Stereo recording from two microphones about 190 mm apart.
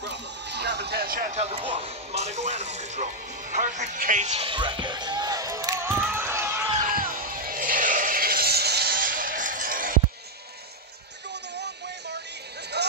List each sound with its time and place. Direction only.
0.0 s a sound: 65° right (ahead or behind); by 6.7 s 10° right (ahead or behind)
6.8 s music: 45° right (ahead or behind)
11.5 s music: 65° right (ahead or behind)